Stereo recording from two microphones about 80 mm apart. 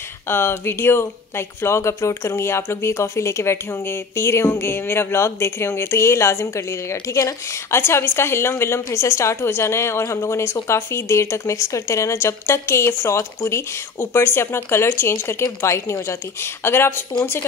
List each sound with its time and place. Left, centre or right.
0.3 s speech: left